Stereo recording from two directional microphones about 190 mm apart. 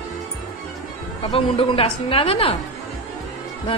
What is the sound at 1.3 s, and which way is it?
A woman's voice, 30° left (ahead or behind).